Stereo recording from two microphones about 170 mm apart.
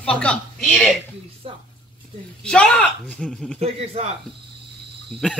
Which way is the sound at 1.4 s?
35° right (ahead or behind).